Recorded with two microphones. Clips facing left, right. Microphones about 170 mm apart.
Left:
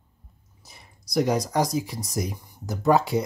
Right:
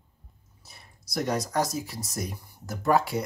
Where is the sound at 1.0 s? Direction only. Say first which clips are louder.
Left 5 dB; centre (ahead or behind).